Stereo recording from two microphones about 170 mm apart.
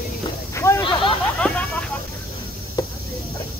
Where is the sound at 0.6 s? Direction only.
15° left (ahead or behind).